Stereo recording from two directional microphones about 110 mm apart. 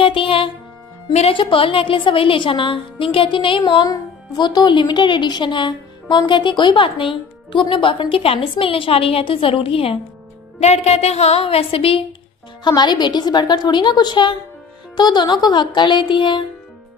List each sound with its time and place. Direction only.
0.0 s a woman's voice: 55° left (ahead or behind)
10.6 s a woman's voice: 75° left (ahead or behind); by 12.0 s 60° left (ahead or behind)
12.6 s a woman's voice: 40° left (ahead or behind)